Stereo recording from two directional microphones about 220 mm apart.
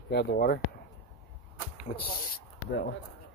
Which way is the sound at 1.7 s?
40° left (ahead or behind).